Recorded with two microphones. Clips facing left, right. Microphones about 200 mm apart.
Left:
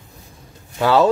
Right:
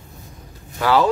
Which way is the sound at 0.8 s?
25° left (ahead or behind).